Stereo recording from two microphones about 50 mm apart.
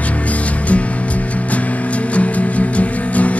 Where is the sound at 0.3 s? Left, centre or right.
Left.